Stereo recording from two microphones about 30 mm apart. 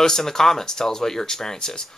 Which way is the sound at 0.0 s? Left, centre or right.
Centre.